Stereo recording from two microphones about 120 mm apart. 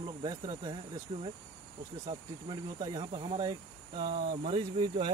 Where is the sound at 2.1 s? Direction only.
45° right (ahead or behind).